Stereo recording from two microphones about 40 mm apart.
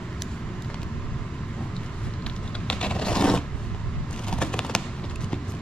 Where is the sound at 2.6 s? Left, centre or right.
Left.